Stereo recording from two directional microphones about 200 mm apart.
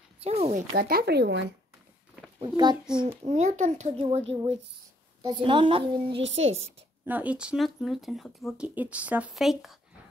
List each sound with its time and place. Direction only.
0.2 s a child's voice: 30° right (ahead or behind)
0.7 s speech: 50° right (ahead or behind)
2.3 s speech: 20° right (ahead or behind)
2.9 s speech: 5° right (ahead or behind)
3.3 s a child's voice: 35° right (ahead or behind)
6.4 s a woman's voice: 80° right
7.1 s speech: 10° right (ahead or behind)